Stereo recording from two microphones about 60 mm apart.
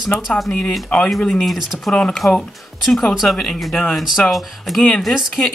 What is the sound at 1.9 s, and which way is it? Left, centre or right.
Speech, centre.